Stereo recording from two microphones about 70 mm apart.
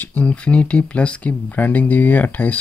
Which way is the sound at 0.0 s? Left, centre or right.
Left.